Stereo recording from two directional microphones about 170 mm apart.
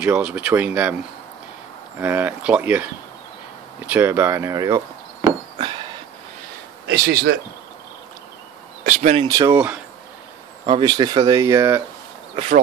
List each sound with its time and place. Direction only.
0.0 s speech: 10° right (ahead or behind)
5.6 s a sound: 30° right (ahead or behind)
6.9 s speech: 70° right (ahead or behind)
8.8 s speech: 45° right (ahead or behind)
9.2 s speech: 20° right (ahead or behind)
10.6 s speech: 30° right (ahead or behind)